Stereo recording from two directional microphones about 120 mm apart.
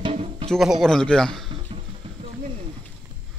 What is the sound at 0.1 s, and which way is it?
Music, 60° right (ahead or behind).